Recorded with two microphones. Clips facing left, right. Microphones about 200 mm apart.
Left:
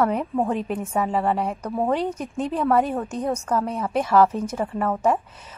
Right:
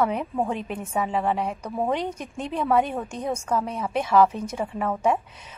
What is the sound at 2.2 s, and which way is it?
Speech, 35° left (ahead or behind).